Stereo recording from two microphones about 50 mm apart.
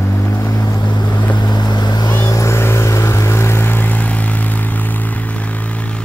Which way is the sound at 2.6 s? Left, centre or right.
Left.